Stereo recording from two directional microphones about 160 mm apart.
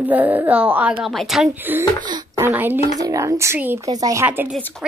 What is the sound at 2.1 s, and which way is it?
A woman's voice, 20° right (ahead or behind).